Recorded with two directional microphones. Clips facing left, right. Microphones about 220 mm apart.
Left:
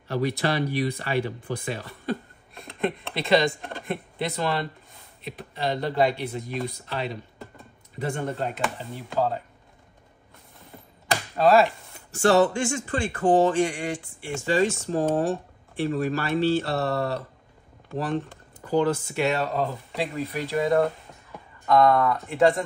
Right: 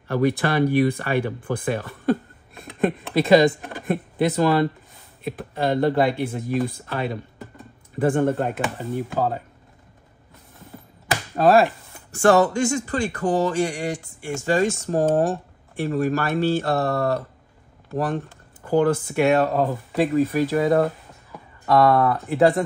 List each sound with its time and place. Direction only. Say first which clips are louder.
0.1 s speech: right 4 dB; 50° right (ahead or behind)
3.2 s speech: right 7 dB; 45° right (ahead or behind)
11.3 s speech: right 2 dB; 50° right (ahead or behind)
18.7 s speech: right 4 dB; 55° right (ahead or behind); by 22.2 s 35° right (ahead or behind)